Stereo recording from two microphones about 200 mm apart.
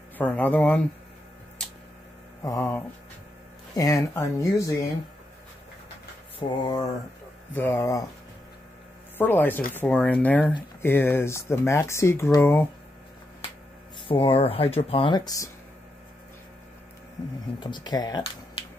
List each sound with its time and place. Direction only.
0.2 s speech: 5° left (ahead or behind)
1.6 s tick-tock: 5° left (ahead or behind)
2.4 s speech: 15° left (ahead or behind)
6.6 s speech: 20° left (ahead or behind)
9.2 s speech: 10° left (ahead or behind)
14.0 s speech: 25° left (ahead or behind)
17.6 s speech: 20° left (ahead or behind)